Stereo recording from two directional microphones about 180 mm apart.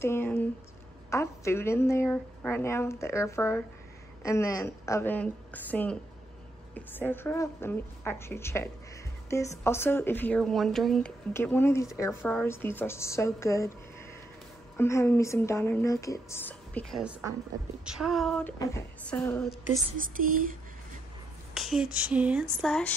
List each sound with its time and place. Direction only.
0.0 s speech: 10° left (ahead or behind)
14.8 s speech: 15° left (ahead or behind)
17.0 s a woman's voice: 5° right (ahead or behind); by 19.5 s 10° left (ahead or behind)
20.0 s speech: 50° right (ahead or behind)
21.5 s speech: centre (ahead or behind)